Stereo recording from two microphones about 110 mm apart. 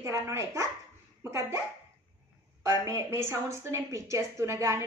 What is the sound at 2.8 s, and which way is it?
A woman's voice, 25° right (ahead or behind).